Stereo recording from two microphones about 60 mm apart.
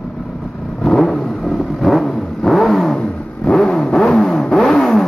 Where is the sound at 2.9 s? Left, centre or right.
Centre.